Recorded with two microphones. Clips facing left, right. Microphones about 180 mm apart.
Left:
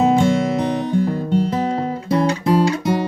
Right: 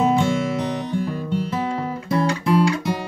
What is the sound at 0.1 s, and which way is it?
Guitar, 40° left (ahead or behind).